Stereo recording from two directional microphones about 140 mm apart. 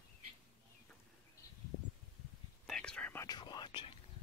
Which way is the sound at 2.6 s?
5° left (ahead or behind).